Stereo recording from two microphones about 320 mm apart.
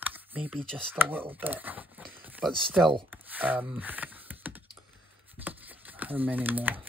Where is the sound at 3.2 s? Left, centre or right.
Centre.